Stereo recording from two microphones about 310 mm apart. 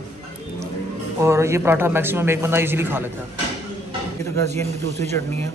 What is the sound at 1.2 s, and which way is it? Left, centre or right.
A man's voice, centre.